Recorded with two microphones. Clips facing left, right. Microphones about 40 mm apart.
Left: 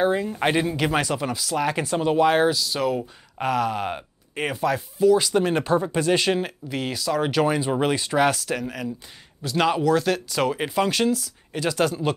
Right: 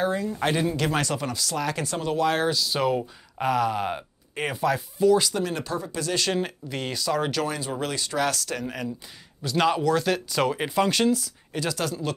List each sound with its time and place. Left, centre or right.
0.0 s speech: left
0.7 s speech: centre
2.5 s speech: centre
3.3 s speech: centre
5.3 s speech: left
6.3 s speech: centre
7.2 s speech: centre
8.6 s speech: centre
11.6 s speech: centre